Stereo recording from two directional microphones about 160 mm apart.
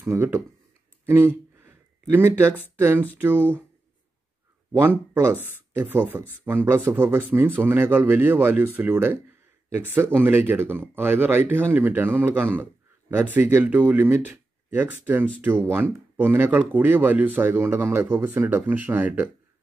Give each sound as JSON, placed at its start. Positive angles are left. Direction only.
{"t": 0.0, "sound": "speech", "side_deg": -15}
{"t": 1.0, "sound": "a sound", "side_deg": -15}
{"t": 2.8, "sound": "speech", "side_deg": -15}
{"t": 4.7, "sound": "speech", "side_deg": -15}